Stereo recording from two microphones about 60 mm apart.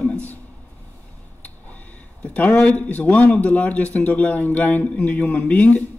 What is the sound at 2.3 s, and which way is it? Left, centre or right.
Speech, left.